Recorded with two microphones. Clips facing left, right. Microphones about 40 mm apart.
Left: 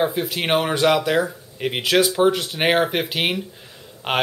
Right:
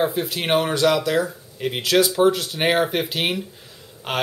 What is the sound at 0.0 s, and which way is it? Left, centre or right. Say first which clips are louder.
Speech: left 1 dB; centre.